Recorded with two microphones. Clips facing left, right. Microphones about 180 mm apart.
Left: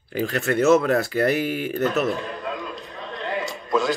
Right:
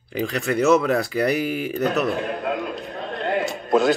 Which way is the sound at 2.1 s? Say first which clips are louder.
Right 5 dB; 60° right (ahead or behind).